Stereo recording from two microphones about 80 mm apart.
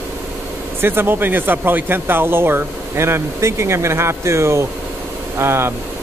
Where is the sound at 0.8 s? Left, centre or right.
Right.